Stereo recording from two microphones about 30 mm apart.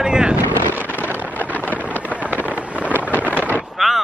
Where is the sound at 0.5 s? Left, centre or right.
Right.